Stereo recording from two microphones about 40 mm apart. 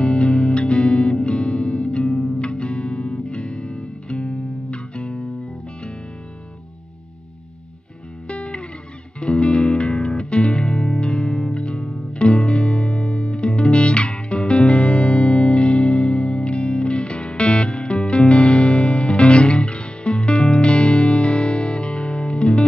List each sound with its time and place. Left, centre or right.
0.0 s music: left
8.3 s music: left